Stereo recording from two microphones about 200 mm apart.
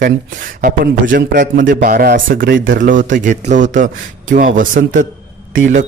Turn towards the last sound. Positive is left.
turn(degrees=-40)  # may be behind; listen again after turning